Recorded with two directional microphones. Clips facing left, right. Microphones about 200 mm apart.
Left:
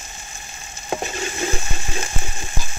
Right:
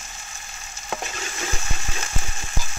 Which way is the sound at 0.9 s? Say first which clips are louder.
Left 6 dB; 25° left (ahead or behind).